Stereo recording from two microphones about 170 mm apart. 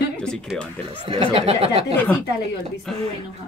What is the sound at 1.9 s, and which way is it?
Speech, 10° left (ahead or behind).